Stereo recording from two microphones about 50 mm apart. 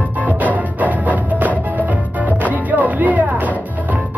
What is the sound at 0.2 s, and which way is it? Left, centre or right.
Music, right.